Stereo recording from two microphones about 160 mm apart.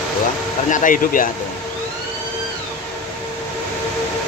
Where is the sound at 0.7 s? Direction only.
55° left (ahead or behind).